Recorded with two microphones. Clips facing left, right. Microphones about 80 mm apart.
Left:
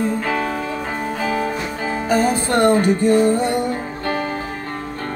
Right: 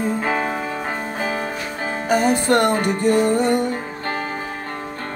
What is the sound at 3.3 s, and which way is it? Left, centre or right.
Music, right.